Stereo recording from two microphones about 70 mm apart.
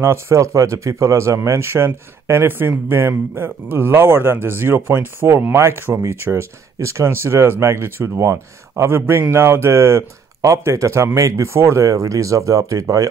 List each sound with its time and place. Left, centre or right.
0.0 s speech: right
8.8 s speech: right